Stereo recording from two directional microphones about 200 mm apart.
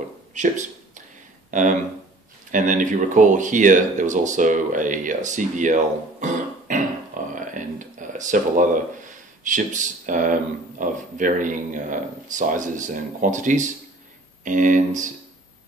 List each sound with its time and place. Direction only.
0.3 s speech: 35° right (ahead or behind)
7.3 s a sound: 40° right (ahead or behind)
9.4 s speech: 40° right (ahead or behind)